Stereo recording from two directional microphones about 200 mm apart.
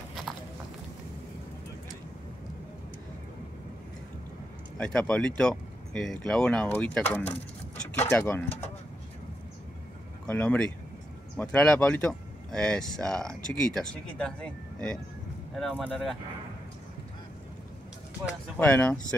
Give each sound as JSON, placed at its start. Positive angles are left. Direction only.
{"t": 4.7, "sound": "speech", "side_deg": 5}
{"t": 8.5, "sound": "speech", "side_deg": 35}
{"t": 10.2, "sound": "speech", "side_deg": 5}
{"t": 18.6, "sound": "speech", "side_deg": 10}